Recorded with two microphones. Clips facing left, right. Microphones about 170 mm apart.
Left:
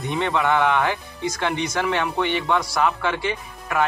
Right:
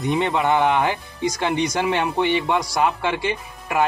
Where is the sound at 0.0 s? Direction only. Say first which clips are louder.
Right 2 dB; 20° right (ahead or behind).